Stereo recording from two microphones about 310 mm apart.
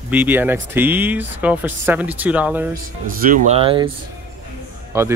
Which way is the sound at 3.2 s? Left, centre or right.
Right.